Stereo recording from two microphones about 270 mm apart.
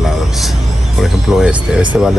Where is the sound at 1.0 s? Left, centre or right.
Centre.